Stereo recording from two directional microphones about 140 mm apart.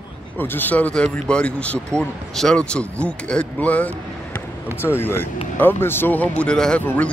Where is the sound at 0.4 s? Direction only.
15° left (ahead or behind).